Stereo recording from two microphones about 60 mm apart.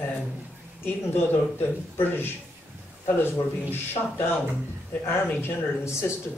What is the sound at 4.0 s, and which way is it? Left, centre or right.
Speech, left.